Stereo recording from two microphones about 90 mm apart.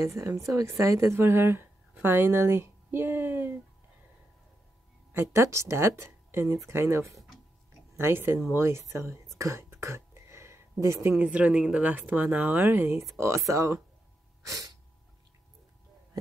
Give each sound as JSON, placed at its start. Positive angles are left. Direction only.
{"t": 0.0, "sound": "a woman's voice", "side_deg": -30}
{"t": 5.1, "sound": "speech", "side_deg": -35}
{"t": 9.4, "sound": "a sound", "side_deg": -30}
{"t": 11.1, "sound": "speech", "side_deg": -15}
{"t": 14.4, "sound": "sneeze", "side_deg": -40}